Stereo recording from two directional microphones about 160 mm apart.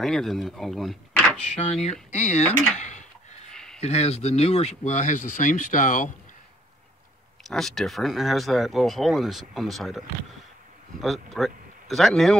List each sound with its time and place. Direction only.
0.0 s speech: centre (ahead or behind)
1.4 s speech: 40° left (ahead or behind)
2.4 s speech: 5° left (ahead or behind)
2.8 s a sound: 50° left (ahead or behind)
3.5 s a sound: 5° left (ahead or behind)
3.8 s speech: 40° left (ahead or behind)
7.4 s speech: centre (ahead or behind)